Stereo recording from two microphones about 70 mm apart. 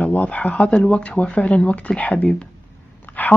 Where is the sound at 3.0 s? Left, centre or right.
Left.